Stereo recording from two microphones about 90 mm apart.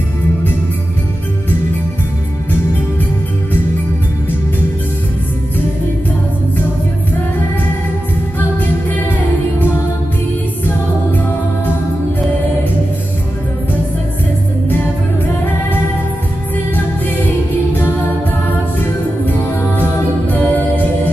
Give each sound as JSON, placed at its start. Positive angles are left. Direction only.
{"t": 8.4, "sound": "music", "side_deg": 20}
{"t": 19.8, "sound": "music", "side_deg": 20}